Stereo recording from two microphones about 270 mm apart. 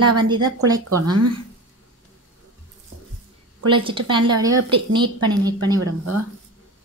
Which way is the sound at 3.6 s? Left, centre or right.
Centre.